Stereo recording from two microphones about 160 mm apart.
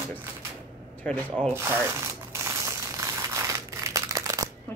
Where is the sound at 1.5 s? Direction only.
15° right (ahead or behind).